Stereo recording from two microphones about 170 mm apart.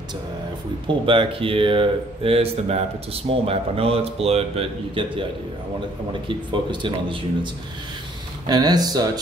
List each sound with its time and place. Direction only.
0.8 s speech: 30° right (ahead or behind)
6.2 s speech: 30° right (ahead or behind)
8.5 s speech: 25° right (ahead or behind)